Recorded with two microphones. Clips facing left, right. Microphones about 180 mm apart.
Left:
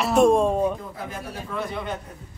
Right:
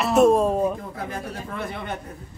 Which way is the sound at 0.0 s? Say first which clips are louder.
Right 1 dB; 5° right (ahead or behind).